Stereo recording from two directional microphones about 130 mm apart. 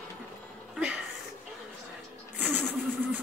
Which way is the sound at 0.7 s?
10° right (ahead or behind).